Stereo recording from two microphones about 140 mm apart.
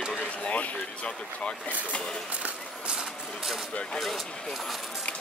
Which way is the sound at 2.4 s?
5° right (ahead or behind).